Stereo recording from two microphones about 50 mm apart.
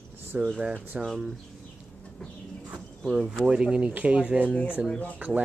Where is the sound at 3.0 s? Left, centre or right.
Centre.